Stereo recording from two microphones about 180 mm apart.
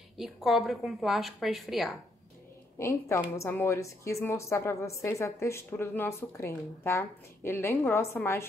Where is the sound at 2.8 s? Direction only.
15° left (ahead or behind).